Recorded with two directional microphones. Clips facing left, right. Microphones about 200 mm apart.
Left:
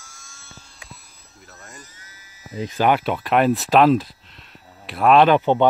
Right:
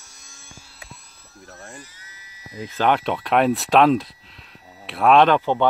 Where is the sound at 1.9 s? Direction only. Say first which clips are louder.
Left 1 dB; 45° left (ahead or behind).